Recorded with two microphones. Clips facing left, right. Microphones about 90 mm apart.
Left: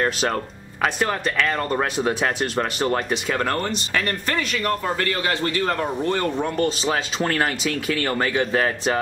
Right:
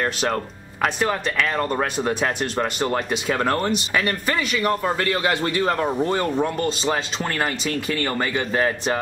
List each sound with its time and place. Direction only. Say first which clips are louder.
0.8 s speech: even; centre (ahead or behind)
4.9 s a man's voice: right 2 dB; 25° right (ahead or behind)
5.7 s speech: right 2 dB; 10° right (ahead or behind)